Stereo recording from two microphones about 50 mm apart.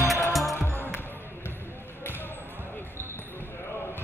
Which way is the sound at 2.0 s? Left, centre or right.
Left.